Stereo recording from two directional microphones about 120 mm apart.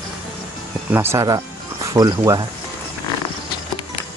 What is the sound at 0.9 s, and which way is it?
Speech, 20° right (ahead or behind).